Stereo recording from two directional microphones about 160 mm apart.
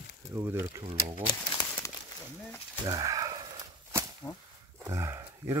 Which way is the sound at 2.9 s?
20° right (ahead or behind).